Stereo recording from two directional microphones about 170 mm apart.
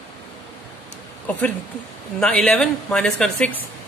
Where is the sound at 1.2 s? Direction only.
10° left (ahead or behind).